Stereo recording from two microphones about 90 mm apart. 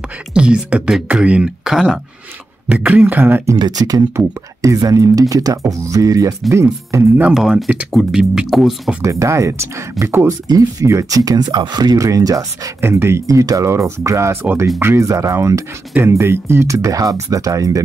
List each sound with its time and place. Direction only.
0.3 s speech: 10° right (ahead or behind)
2.7 s speech: 15° right (ahead or behind)
3.5 s speech: 50° right (ahead or behind); by 7.1 s 30° right (ahead or behind)
7.3 s speech: 5° right (ahead or behind)
9.0 s speech: 35° right (ahead or behind)
12.8 s speech: 30° right (ahead or behind)